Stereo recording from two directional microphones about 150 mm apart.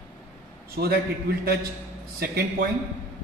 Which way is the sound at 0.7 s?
90° right.